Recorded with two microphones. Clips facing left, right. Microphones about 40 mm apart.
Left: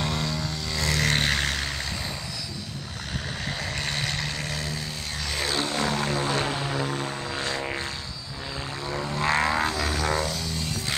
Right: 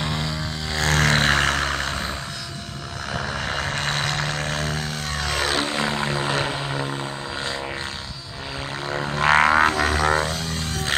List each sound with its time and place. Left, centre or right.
0.0 s vehicle: centre
0.7 s vehicle: right
1.0 s vehicle: right
3.4 s vehicle: right
5.4 s vehicle: right
9.0 s didgeridoo: right